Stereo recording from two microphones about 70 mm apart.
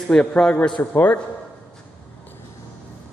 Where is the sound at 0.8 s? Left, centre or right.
Left.